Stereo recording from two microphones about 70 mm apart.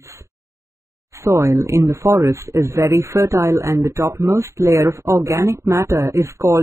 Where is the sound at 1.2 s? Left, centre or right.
Right.